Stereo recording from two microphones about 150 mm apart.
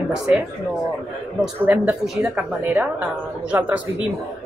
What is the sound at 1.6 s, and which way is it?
Speech, 15° right (ahead or behind).